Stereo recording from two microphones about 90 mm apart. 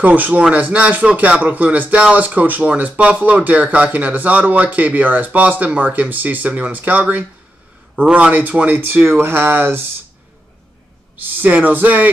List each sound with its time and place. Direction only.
0.0 s speech: 15° right (ahead or behind)
11.4 s speech: 15° right (ahead or behind)